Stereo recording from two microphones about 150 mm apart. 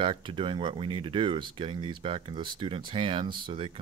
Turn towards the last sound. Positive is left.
turn(degrees=-35)  # may be behind; listen again after turning